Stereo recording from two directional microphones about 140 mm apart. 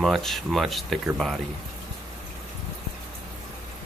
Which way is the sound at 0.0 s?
Centre (ahead or behind).